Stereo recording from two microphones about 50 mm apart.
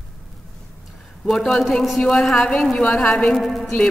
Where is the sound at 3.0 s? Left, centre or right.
Centre.